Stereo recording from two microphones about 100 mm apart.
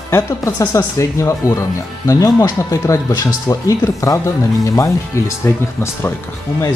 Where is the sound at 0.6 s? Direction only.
40° left (ahead or behind).